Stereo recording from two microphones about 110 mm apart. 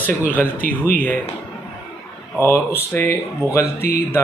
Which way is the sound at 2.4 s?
25° left (ahead or behind).